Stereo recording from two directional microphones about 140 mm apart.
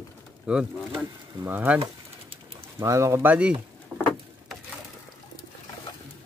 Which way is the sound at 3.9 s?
10° right (ahead or behind).